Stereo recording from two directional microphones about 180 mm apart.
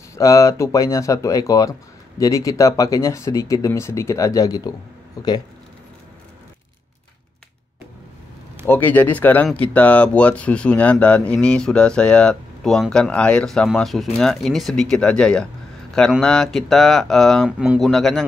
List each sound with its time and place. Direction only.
0.1 s speech: 15° left (ahead or behind)
8.6 s speech: 10° left (ahead or behind)